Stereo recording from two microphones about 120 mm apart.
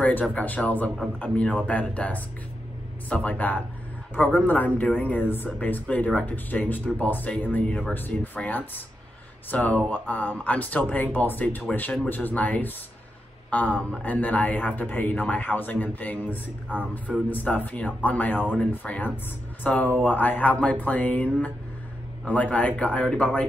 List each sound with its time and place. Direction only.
0.0 s speech: 15° left (ahead or behind)